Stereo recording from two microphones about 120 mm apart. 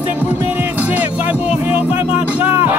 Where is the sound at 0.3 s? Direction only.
15° right (ahead or behind).